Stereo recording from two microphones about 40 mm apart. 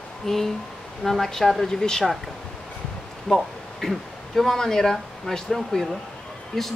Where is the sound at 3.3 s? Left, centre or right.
Centre.